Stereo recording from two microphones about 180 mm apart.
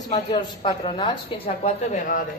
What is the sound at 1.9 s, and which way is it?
Speech, 50° left (ahead or behind).